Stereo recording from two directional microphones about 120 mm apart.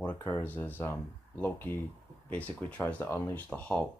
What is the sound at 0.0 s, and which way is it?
Speech, 15° left (ahead or behind).